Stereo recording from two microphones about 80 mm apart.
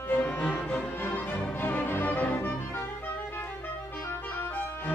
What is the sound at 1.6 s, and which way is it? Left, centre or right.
Music, left.